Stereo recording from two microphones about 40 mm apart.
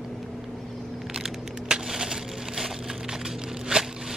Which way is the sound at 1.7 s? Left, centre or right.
Centre.